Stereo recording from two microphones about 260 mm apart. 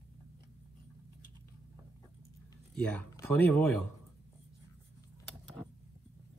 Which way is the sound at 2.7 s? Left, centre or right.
Centre.